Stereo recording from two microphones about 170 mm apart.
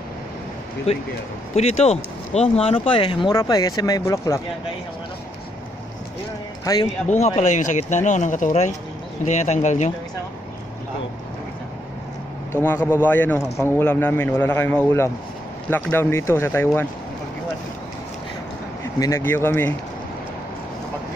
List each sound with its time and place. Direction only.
1.5 s speech: 40° left (ahead or behind); by 4.4 s 20° left (ahead or behind)
6.6 s a man's voice: 20° left (ahead or behind)
7.3 s speech: 45° left (ahead or behind)
12.5 s a man's voice: 10° left (ahead or behind)
18.9 s a man's voice: 15° left (ahead or behind)